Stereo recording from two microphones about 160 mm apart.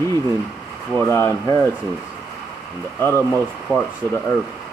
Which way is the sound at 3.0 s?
15° left (ahead or behind).